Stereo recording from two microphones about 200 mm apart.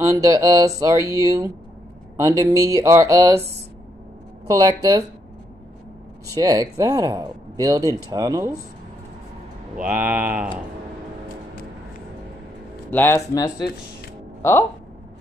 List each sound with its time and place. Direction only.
0.0 s speech: 15° right (ahead or behind)
4.5 s speech: 15° right (ahead or behind)
6.3 s speech: 15° right (ahead or behind)
9.8 s speech: 10° right (ahead or behind)
12.9 s speech: 10° left (ahead or behind)